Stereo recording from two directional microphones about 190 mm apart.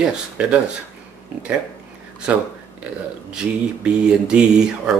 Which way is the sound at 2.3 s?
5° right (ahead or behind).